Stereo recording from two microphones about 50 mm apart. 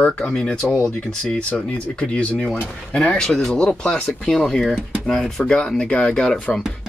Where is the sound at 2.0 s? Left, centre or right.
Left.